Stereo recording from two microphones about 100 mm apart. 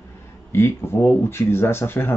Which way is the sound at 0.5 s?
25° left (ahead or behind).